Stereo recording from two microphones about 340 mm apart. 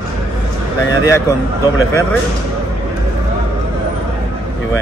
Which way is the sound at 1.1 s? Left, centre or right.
Centre.